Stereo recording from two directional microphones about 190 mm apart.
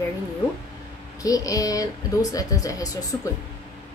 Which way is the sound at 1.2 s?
20° left (ahead or behind).